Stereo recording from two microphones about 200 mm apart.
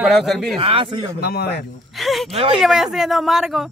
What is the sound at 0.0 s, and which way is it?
Speech, centre (ahead or behind).